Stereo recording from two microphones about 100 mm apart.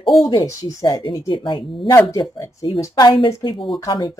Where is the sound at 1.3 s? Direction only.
55° left (ahead or behind).